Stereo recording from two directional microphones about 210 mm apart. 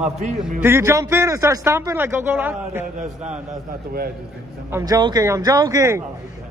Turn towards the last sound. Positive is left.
turn(degrees=-15)  # may be behind; listen again after turning